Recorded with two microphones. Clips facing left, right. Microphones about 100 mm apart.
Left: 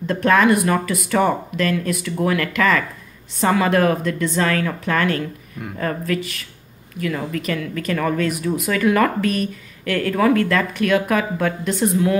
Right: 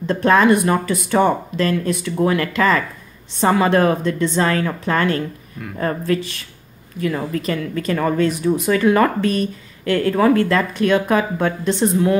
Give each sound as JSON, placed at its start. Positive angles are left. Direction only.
{"t": 0.0, "sound": "speech", "side_deg": -25}